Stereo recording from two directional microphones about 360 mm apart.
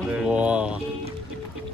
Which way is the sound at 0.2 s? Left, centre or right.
Centre.